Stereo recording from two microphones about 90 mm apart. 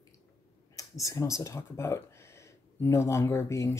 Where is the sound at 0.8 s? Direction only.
40° left (ahead or behind).